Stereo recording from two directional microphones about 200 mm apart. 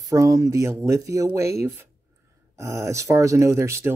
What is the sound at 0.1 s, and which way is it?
Speech, 15° right (ahead or behind).